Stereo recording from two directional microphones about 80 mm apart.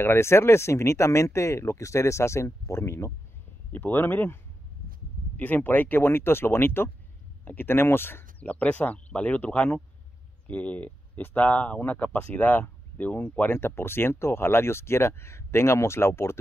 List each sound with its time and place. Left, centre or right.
0.0 s speech: left
3.7 s speech: left
5.4 s speech: left